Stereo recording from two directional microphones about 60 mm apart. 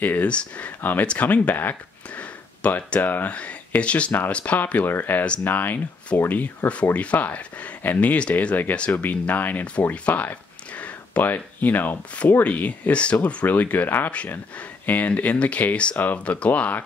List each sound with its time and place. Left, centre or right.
0.0 s speech: left
0.7 s speech: left
2.6 s speech: left
3.0 s speech: left
4.8 s speech: left